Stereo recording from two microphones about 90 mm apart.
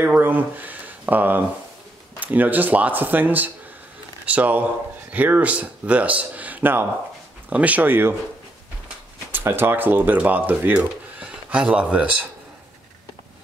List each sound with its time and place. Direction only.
0.0 s a sound: 20° right (ahead or behind)
2.1 s speech: 20° right (ahead or behind)
9.3 s speech: 25° right (ahead or behind)